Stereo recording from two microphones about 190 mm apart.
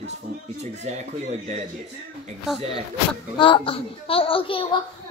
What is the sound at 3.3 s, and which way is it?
A woman's voice, 25° left (ahead or behind).